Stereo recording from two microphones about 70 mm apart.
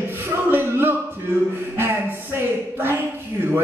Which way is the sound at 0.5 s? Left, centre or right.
Right.